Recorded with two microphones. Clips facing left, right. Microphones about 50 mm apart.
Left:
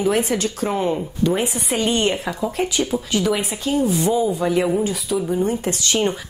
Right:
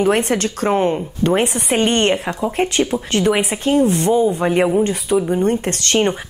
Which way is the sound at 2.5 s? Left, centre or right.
Right.